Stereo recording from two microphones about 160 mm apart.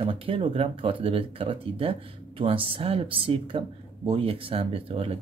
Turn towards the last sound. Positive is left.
turn(degrees=-35)  # may be behind; listen again after turning